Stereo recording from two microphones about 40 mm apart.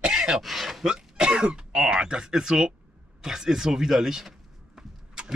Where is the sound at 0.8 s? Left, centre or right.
Centre.